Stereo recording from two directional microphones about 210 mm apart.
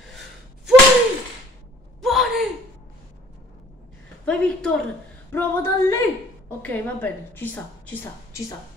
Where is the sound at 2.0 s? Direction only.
Centre (ahead or behind).